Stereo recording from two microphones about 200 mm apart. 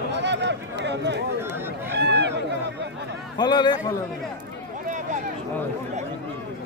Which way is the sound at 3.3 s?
20° left (ahead or behind).